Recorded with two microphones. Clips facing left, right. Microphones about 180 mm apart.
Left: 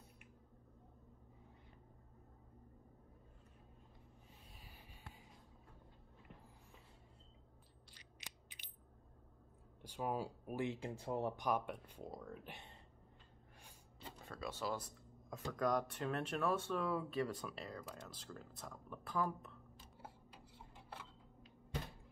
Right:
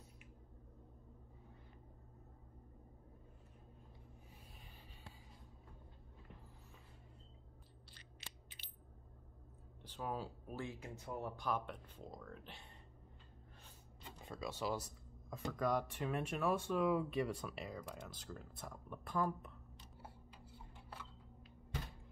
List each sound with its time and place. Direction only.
7.9 s mechanisms: 15° left (ahead or behind)
9.8 s speech: 10° left (ahead or behind); by 11.4 s 30° left (ahead or behind)
11.4 s speech: 10° left (ahead or behind)
14.2 s a sound: 15° right (ahead or behind)
14.6 s speech: 10° right (ahead or behind)